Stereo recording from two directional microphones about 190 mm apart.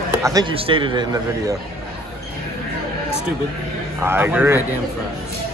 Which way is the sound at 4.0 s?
10° right (ahead or behind).